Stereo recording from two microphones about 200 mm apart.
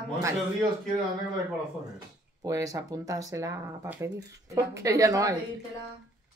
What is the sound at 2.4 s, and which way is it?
Speech, 15° right (ahead or behind).